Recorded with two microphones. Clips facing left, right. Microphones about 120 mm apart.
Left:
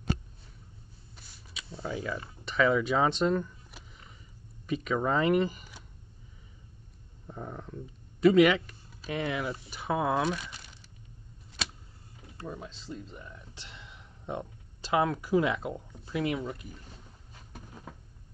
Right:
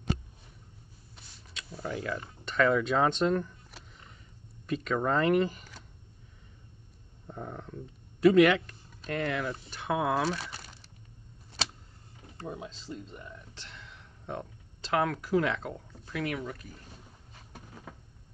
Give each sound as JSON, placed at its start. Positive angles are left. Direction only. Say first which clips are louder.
{"t": 1.1, "sound": "a sound", "louder": "even", "side_deg": 5}
{"t": 1.8, "sound": "speech", "louder": "even", "side_deg": 5}
{"t": 7.2, "sound": "speech", "louder": "even", "side_deg": 0}
{"t": 12.5, "sound": "speech", "louder": "even", "side_deg": 0}
{"t": 13.6, "sound": "speech", "louder": "even", "side_deg": 15}